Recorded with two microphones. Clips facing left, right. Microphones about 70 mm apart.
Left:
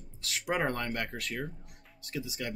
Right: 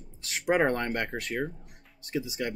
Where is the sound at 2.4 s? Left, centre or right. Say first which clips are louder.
Right 4 dB; right.